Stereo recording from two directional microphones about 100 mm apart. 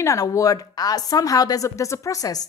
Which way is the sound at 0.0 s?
30° left (ahead or behind).